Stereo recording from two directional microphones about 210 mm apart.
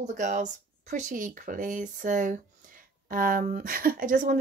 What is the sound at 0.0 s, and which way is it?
Speech, 35° right (ahead or behind).